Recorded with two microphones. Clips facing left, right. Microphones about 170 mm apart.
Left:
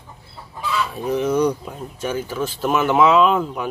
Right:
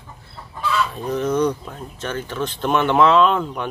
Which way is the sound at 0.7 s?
10° left (ahead or behind).